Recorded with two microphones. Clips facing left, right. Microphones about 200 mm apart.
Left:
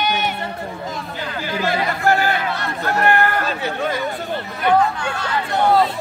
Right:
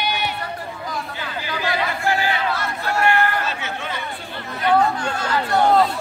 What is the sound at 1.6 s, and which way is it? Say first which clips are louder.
Chatter: left 3 dB; 45° left (ahead or behind).